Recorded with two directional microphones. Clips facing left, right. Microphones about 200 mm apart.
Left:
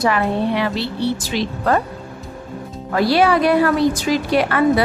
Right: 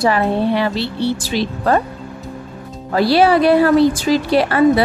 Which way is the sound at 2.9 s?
30° right (ahead or behind).